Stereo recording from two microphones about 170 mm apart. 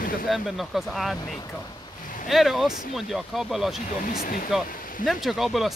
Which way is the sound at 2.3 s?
Centre (ahead or behind).